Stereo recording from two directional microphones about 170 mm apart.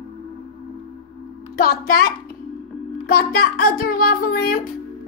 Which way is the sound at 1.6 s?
60° left (ahead or behind).